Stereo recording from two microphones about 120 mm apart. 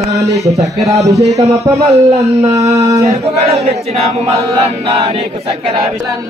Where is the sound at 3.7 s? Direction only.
60° right (ahead or behind).